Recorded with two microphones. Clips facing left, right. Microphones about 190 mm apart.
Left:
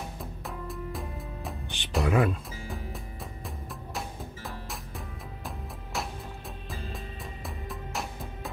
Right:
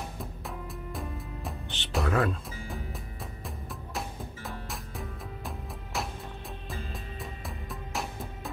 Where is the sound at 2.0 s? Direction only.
15° left (ahead or behind).